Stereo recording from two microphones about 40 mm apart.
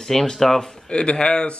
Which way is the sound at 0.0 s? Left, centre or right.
Centre.